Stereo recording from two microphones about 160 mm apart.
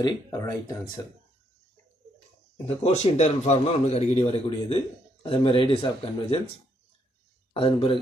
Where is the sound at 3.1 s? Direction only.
45° left (ahead or behind).